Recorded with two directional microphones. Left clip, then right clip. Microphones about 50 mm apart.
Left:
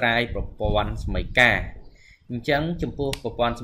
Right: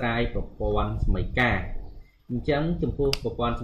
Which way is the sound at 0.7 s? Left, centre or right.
Left.